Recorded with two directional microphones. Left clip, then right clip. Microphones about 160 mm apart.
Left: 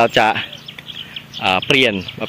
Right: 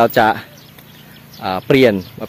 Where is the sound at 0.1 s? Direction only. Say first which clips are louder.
Right 1 dB; 5° left (ahead or behind).